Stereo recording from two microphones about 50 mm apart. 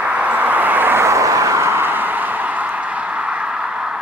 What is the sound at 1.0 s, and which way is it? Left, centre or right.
Vehicle, right.